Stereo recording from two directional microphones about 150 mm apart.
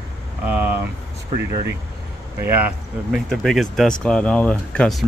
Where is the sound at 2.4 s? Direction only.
10° right (ahead or behind).